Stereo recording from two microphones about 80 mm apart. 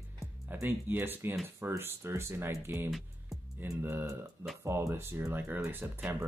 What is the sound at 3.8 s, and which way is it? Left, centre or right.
Speech, right.